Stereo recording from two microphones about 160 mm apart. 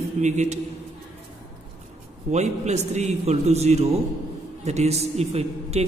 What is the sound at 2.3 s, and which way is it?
A man's voice, 45° right (ahead or behind).